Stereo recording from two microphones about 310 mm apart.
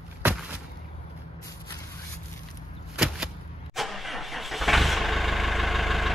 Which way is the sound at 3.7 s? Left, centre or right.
Centre.